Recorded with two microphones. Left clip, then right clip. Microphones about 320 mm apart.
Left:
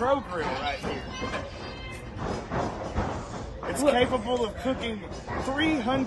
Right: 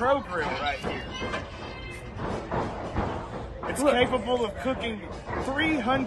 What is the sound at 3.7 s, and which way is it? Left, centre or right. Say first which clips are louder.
Speech: even; centre.